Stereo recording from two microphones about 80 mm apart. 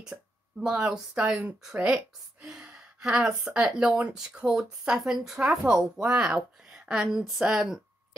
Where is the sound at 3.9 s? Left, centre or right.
Centre.